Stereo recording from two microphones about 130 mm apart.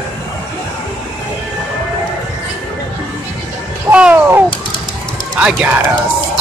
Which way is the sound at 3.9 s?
15° right (ahead or behind).